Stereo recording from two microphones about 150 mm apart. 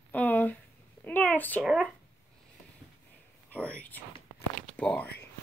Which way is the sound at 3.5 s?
10° left (ahead or behind).